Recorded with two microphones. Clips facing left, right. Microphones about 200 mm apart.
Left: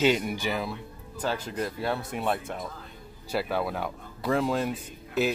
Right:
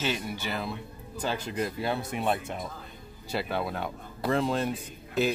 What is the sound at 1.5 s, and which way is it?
Speech, 5° right (ahead or behind).